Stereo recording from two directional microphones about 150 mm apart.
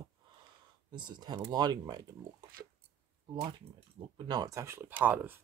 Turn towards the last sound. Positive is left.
turn(degrees=-10)  # may be behind; listen again after turning